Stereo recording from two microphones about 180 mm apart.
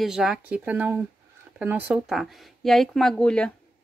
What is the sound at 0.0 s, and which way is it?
Speech, 5° right (ahead or behind).